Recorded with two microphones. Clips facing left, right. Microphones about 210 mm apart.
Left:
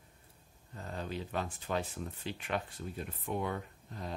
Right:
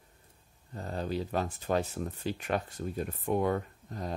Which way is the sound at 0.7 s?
35° right (ahead or behind).